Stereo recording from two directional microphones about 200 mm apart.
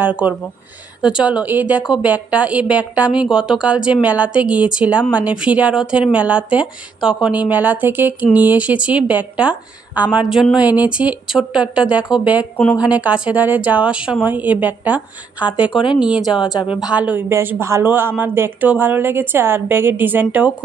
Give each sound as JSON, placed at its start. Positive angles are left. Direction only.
{"t": 0.0, "sound": "a woman's voice", "side_deg": -10}
{"t": 15.5, "sound": "speech", "side_deg": 25}
{"t": 16.0, "sound": "a woman's voice", "side_deg": -5}